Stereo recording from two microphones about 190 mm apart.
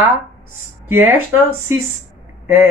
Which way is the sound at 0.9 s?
10° right (ahead or behind).